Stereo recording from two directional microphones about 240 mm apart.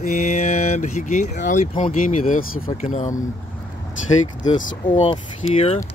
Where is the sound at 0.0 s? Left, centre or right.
Left.